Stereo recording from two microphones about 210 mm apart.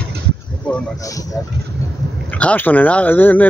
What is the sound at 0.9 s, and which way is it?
Speech, 15° left (ahead or behind).